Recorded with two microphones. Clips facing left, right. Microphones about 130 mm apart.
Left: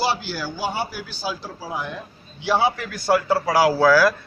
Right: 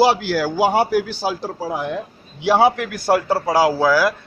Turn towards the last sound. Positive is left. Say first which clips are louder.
# left 1 dB
turn(degrees=-15)  # may be behind; listen again after turning